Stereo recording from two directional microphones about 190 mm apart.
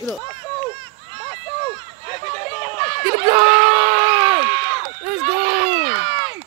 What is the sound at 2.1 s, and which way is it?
Chatter, 35° left (ahead or behind).